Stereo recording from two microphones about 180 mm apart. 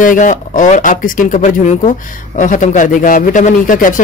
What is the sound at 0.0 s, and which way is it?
Speech, 45° left (ahead or behind).